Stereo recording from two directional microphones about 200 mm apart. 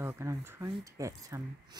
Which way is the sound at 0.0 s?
15° right (ahead or behind).